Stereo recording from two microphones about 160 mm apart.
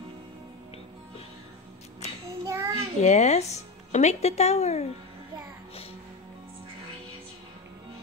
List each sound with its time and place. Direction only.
2.0 s child singing: 40° left (ahead or behind)
2.4 s child singing: 20° right (ahead or behind)
3.0 s speech: 45° left (ahead or behind)